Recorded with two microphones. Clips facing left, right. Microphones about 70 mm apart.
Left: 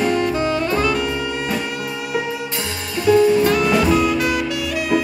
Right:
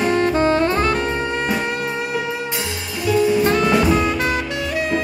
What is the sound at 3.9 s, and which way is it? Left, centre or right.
Music, right.